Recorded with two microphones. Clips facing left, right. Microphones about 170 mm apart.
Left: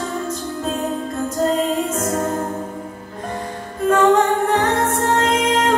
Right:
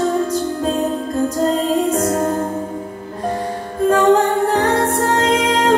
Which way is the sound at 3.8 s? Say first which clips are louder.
Right 2 dB; 35° right (ahead or behind).